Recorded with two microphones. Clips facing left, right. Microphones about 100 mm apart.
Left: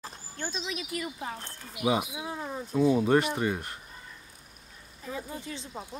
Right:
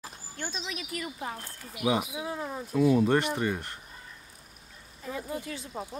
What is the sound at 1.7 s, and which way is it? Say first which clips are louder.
Speech: even; centre (ahead or behind).